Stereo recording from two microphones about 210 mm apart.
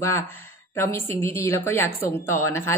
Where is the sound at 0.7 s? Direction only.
10° left (ahead or behind).